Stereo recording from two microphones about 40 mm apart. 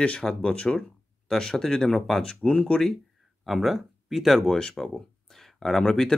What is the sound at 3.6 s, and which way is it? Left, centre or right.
Speech, centre.